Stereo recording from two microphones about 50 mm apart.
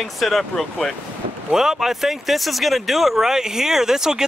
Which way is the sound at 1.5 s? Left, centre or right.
Centre.